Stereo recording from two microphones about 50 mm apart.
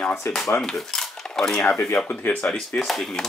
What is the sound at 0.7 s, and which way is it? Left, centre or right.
Cutlery, centre.